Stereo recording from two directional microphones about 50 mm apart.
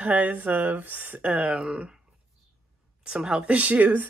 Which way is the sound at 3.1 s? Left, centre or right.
Centre.